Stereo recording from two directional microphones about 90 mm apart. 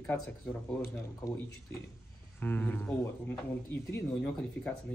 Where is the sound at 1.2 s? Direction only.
10° left (ahead or behind).